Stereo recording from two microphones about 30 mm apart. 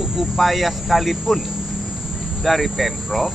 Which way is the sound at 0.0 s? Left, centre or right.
Centre.